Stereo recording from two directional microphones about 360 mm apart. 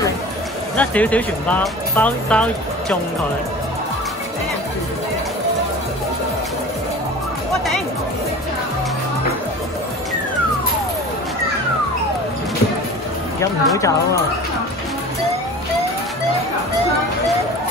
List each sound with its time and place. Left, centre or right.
0.7 s speech: centre
13.7 s speech: centre